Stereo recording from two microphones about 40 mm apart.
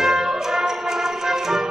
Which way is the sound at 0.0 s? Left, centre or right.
Centre.